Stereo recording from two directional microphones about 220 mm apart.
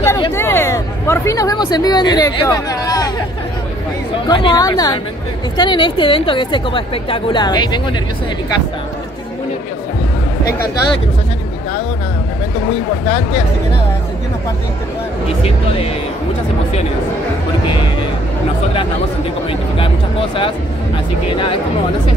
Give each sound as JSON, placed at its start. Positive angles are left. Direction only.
{"t": 0.0, "sound": "a sound", "side_deg": 10}
{"t": 4.3, "sound": "a woman's voice", "side_deg": 20}
{"t": 15.4, "sound": "a woman's voice", "side_deg": 25}
{"t": 19.8, "sound": "a woman's voice", "side_deg": 25}